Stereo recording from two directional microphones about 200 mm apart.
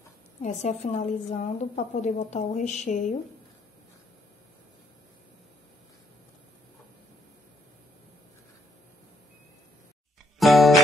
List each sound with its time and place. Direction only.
0.4 s a woman's voice: 35° left (ahead or behind)
10.4 s music: centre (ahead or behind)